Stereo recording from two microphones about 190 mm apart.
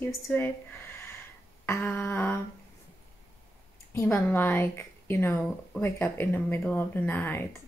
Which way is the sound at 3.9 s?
10° left (ahead or behind).